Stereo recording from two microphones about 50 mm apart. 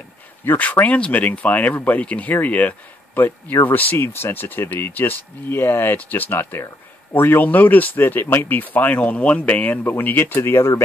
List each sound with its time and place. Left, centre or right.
0.6 s speech: left
4.0 s speech: left
5.9 s speech: left
9.8 s speech: left